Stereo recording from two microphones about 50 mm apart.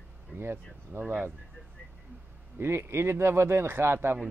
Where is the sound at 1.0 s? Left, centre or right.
Right.